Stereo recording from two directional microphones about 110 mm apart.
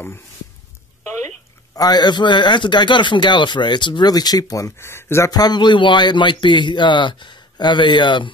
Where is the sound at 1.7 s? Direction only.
40° left (ahead or behind).